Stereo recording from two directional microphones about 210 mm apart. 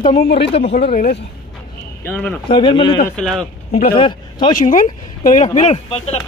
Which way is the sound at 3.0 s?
5° left (ahead or behind).